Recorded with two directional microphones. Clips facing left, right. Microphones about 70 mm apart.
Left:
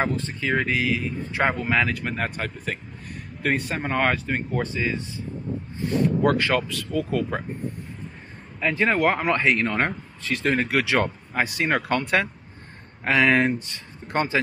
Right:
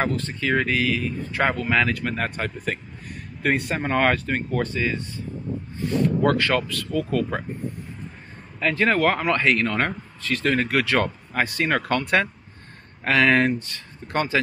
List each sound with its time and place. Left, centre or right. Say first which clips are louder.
0.0 s speech: right 1 dB; centre
6.2 s speech: even; centre
8.5 s speech: right 1 dB; centre
12.0 s speech: right 1 dB; centre
13.0 s speech: right 1 dB; centre
13.5 s speech: right 1 dB; left